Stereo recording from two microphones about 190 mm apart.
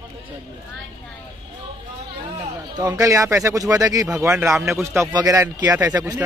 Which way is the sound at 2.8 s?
15° right (ahead or behind).